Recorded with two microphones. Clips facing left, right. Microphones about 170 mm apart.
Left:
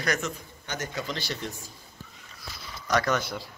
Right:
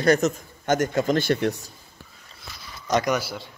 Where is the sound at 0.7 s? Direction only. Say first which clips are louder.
Right 12 dB; 50° right (ahead or behind).